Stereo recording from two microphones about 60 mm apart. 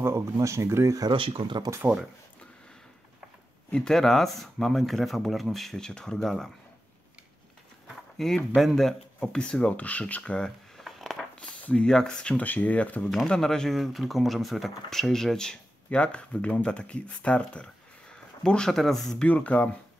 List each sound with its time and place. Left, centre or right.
0.0 s speech: right
1.8 s speech: right
3.7 s speech: centre
8.2 s speech: centre; by 10.4 s left
10.8 s a sound: centre
11.3 s speech: centre
12.4 s speech: left
13.1 s speech: centre
19.2 s speech: left